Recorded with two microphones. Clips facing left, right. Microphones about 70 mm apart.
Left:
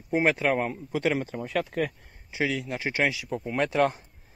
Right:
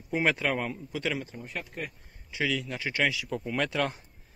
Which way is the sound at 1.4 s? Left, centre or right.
Left.